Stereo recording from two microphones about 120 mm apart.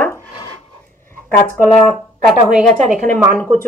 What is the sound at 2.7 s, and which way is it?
Speech, 90° right.